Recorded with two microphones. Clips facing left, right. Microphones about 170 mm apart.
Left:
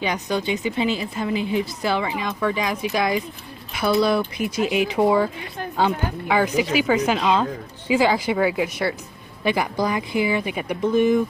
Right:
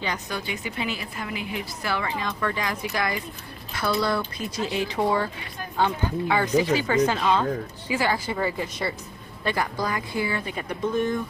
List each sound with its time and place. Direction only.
0.0 s a woman's voice: 20° left (ahead or behind)
8.5 s speech: 85° left
9.4 s speech: 15° left (ahead or behind)